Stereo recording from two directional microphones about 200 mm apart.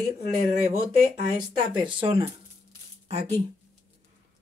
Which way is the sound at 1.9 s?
25° right (ahead or behind).